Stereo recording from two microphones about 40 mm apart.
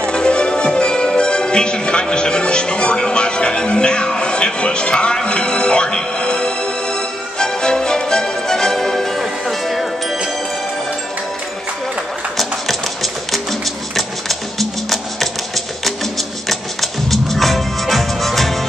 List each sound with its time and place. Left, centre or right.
0.1 s music: left; by 9.8 s centre
12.4 s music: centre